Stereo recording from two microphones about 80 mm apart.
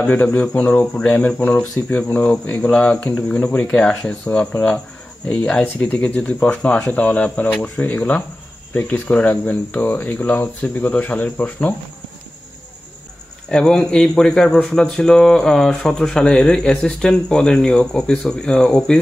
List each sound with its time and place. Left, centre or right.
0.0 s speech: centre
13.5 s speech: centre